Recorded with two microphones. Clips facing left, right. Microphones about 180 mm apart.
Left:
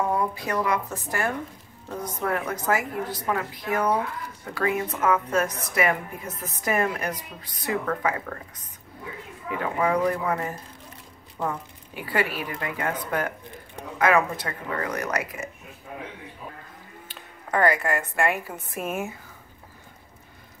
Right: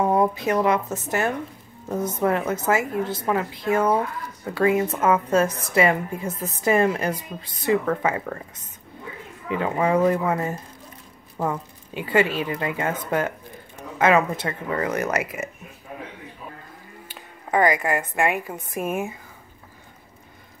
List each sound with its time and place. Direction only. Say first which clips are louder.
0.0 s a woman's voice: right 6 dB; 25° right (ahead or behind)
9.5 s a woman's voice: right 3 dB; 25° right (ahead or behind)
11.9 s a woman's voice: right 6 dB; 25° right (ahead or behind)
17.1 s speech: right 4 dB; 10° right (ahead or behind)
18.7 s speech: right 3 dB; 15° right (ahead or behind)